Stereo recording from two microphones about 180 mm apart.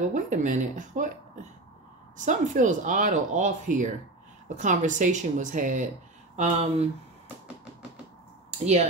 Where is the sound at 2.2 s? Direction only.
45° right (ahead or behind).